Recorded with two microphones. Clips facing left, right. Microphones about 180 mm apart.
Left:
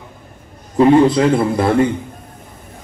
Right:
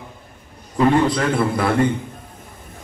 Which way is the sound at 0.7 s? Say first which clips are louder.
Left 6 dB; 25° left (ahead or behind).